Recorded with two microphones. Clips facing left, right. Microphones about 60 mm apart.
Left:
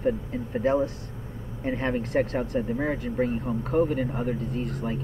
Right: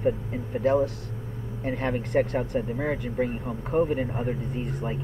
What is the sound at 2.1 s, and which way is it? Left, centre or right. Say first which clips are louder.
Speech: right 3 dB; centre.